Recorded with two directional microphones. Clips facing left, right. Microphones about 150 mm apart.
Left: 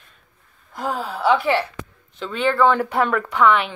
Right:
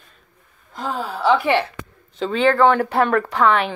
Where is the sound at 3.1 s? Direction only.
35° right (ahead or behind).